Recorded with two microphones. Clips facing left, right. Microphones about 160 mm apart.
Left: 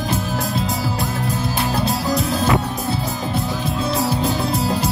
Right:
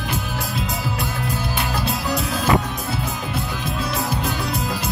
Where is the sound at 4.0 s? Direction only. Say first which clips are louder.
Left 4 dB; 35° left (ahead or behind).